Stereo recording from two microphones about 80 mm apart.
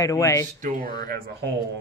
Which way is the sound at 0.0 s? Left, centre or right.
Left.